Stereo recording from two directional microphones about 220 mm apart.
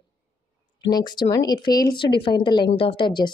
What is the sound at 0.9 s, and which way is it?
Speech, 20° left (ahead or behind).